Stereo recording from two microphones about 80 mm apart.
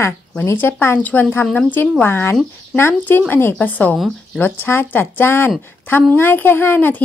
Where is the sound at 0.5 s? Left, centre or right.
Left.